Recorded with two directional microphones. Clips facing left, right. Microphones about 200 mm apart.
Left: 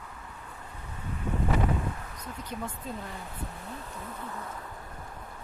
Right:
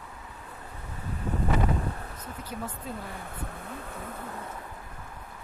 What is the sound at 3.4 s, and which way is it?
Speech, 55° right (ahead or behind).